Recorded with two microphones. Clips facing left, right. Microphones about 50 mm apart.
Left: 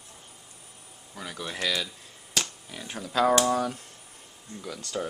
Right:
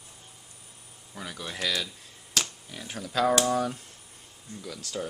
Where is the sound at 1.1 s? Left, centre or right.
Centre.